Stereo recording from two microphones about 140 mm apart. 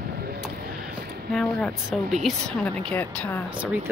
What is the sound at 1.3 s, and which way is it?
A woman's voice, 5° left (ahead or behind).